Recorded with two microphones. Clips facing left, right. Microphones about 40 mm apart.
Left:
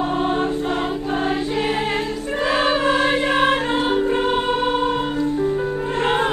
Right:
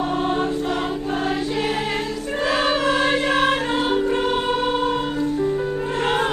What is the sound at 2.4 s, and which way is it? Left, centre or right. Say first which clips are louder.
Music: left 1 dB; left.